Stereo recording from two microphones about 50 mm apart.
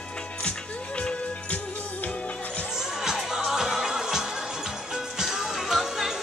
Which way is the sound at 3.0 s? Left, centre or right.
Centre.